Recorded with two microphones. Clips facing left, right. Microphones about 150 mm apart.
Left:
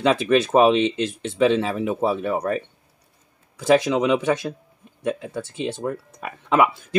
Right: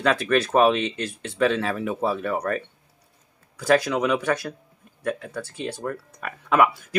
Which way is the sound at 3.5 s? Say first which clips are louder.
Left 3 dB; 20° left (ahead or behind).